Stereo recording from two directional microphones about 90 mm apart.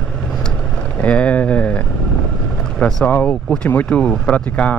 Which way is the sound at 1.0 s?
15° left (ahead or behind).